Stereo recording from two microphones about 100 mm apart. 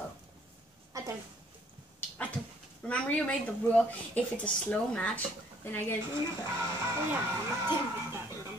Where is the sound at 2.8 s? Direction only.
10° left (ahead or behind).